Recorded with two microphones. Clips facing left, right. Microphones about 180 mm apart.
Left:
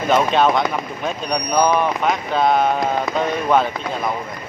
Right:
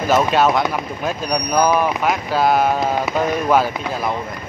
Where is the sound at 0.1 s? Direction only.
5° right (ahead or behind).